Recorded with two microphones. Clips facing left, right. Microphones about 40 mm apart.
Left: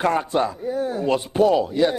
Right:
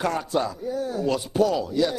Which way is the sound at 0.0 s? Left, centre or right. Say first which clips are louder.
Left 4 dB; left.